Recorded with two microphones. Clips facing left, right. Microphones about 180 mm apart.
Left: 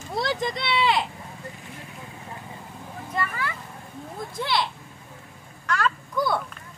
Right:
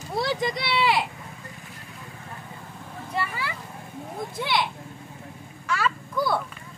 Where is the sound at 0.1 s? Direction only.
5° right (ahead or behind).